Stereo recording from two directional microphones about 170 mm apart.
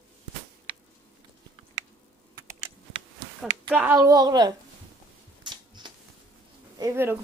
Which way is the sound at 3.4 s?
5° right (ahead or behind).